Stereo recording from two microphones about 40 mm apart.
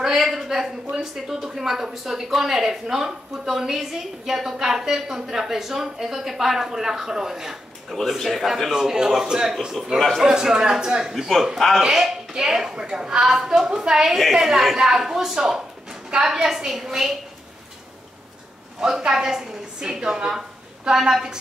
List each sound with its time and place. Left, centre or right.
0.0 s a sound: centre
0.9 s a woman's voice: centre
11.5 s a woman's voice: centre
11.9 s a woman's voice: centre
14.1 s a woman's voice: centre
18.8 s a woman's voice: centre